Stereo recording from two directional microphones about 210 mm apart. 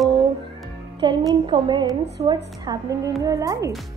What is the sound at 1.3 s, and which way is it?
A woman's voice, 20° right (ahead or behind).